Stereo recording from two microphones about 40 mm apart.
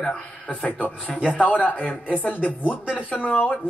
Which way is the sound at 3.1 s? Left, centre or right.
Left.